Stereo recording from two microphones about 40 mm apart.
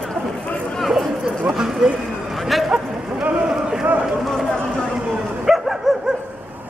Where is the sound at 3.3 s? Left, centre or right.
Right.